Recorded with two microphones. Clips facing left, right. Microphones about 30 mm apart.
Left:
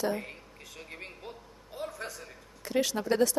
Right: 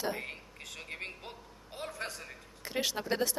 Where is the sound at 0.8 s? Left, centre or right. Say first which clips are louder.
Right 1 dB; right.